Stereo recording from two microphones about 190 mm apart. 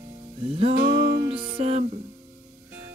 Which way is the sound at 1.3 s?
30° right (ahead or behind).